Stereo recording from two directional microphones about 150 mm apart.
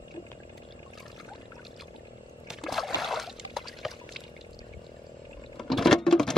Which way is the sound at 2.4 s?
Centre (ahead or behind).